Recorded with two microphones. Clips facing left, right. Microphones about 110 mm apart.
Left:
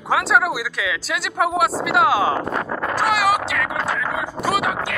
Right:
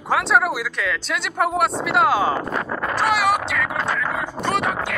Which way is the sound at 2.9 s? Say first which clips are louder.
Left 1 dB; centre (ahead or behind).